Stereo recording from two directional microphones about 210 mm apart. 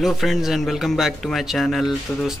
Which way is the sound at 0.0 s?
Centre (ahead or behind).